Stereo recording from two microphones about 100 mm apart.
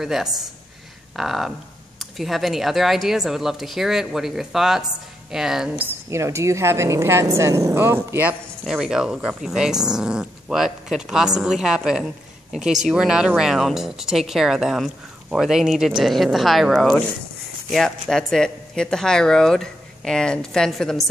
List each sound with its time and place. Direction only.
0.0 s speech: 5° right (ahead or behind)
5.8 s a woman's voice: 25° right (ahead or behind)
8.6 s speech: 5° right (ahead or behind)